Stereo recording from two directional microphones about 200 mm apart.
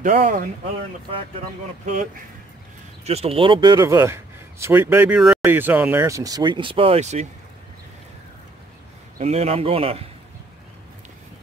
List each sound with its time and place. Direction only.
0.0 s speech: 40° right (ahead or behind)
3.1 s speech: 30° right (ahead or behind)
9.2 s a man's voice: 30° right (ahead or behind)